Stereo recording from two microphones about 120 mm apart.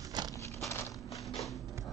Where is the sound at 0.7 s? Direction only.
25° left (ahead or behind).